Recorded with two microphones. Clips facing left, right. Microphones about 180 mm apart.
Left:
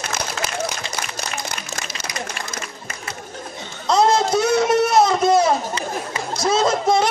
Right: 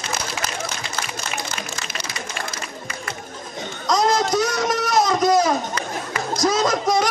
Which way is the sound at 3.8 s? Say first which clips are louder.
Left 3 dB; 30° left (ahead or behind).